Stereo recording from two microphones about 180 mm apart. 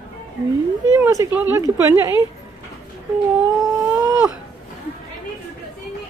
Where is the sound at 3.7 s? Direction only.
20° right (ahead or behind).